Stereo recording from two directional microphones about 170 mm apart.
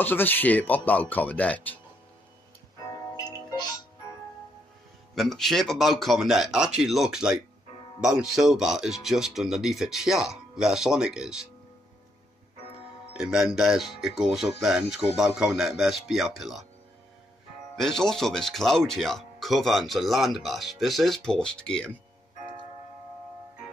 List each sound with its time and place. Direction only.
0.0 s speech: 10° left (ahead or behind)
3.2 s music: 20° left (ahead or behind)
5.1 s speech: centre (ahead or behind)
13.2 s speech: 5° right (ahead or behind)
17.7 s speech: centre (ahead or behind)